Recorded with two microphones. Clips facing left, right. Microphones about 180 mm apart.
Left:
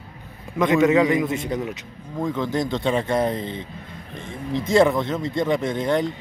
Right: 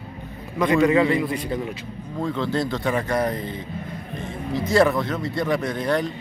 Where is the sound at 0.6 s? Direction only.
20° left (ahead or behind).